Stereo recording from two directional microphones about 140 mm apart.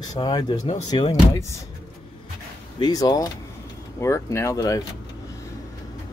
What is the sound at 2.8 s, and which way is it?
Speech, 25° left (ahead or behind).